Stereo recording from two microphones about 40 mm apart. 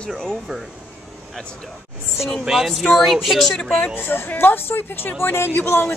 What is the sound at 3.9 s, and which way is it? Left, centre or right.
Speech, left.